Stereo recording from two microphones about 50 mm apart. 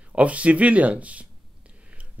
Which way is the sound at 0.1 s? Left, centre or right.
Right.